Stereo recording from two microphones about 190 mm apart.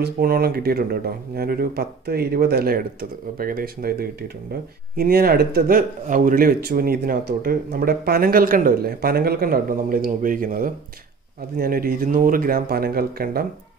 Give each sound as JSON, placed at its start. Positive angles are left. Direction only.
{"t": 0.0, "sound": "speech", "side_deg": -50}